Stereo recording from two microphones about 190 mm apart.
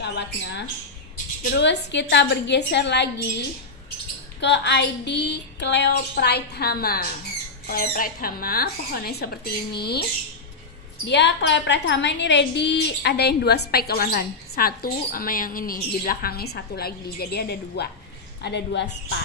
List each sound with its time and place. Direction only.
0.0 s a woman's voice: 60° left (ahead or behind)
4.4 s a woman's voice: 65° left (ahead or behind)
11.1 s a woman's voice: 65° left (ahead or behind)